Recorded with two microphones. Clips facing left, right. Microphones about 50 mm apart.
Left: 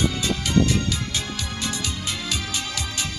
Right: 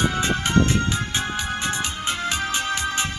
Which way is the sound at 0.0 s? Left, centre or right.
Right.